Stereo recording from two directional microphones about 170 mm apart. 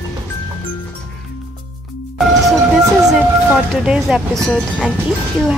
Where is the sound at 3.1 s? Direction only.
Centre (ahead or behind).